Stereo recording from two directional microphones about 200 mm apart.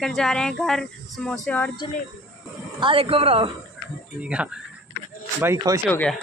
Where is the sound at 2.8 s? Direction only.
25° right (ahead or behind).